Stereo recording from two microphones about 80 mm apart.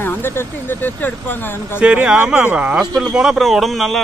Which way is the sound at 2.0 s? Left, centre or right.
Centre.